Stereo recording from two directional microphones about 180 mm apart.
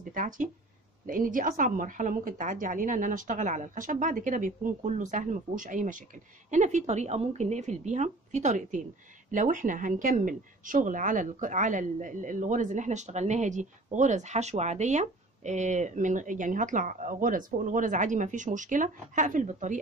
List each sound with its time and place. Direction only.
0.1 s speech: 45° right (ahead or behind)